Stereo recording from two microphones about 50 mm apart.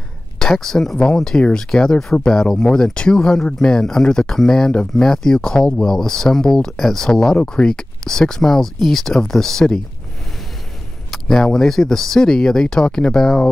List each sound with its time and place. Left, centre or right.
0.4 s speech: centre
11.1 s speech: centre